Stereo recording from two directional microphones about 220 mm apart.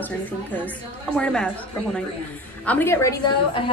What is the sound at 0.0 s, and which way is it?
A woman's voice, 5° left (ahead or behind).